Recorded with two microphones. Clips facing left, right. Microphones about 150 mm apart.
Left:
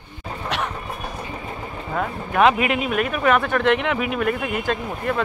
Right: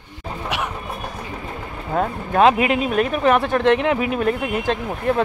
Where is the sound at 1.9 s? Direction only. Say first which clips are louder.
Right 4 dB; 35° right (ahead or behind).